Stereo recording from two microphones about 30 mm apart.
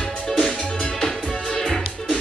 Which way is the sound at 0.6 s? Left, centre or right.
Left.